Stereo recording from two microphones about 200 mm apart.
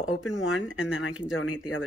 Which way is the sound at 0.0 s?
80° left.